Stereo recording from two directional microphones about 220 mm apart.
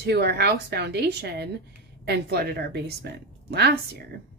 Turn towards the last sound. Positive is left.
turn(degrees=-50)  # may be behind; listen again after turning